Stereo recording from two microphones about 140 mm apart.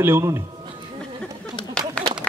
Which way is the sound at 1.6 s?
35° left (ahead or behind).